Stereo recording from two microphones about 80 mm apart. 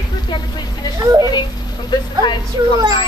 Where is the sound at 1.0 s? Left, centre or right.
Right.